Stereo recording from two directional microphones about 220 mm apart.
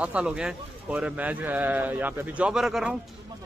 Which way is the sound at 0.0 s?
5° right (ahead or behind).